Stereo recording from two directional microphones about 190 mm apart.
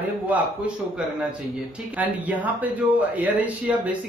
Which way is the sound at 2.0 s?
10° right (ahead or behind).